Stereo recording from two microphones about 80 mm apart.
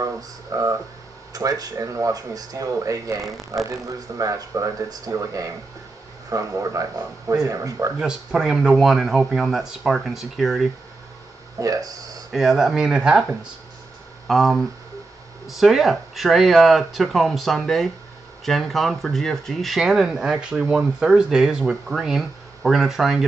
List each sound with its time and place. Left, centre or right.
0.0 s speech: right
8.0 s speech: centre
11.6 s speech: right
12.3 s speech: centre
19.8 s speech: centre